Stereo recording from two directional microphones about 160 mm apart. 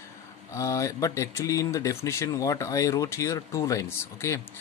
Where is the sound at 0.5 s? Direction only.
20° left (ahead or behind).